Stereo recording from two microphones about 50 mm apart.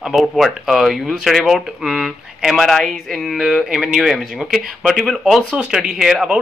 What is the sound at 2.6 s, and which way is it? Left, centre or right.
A man's voice, centre.